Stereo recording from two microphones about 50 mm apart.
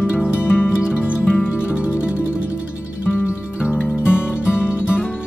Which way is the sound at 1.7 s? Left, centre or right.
Right.